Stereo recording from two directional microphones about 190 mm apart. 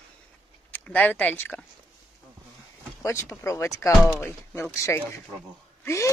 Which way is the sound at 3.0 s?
15° left (ahead or behind).